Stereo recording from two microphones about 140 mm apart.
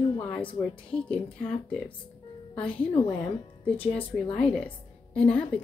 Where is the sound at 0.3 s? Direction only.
10° left (ahead or behind).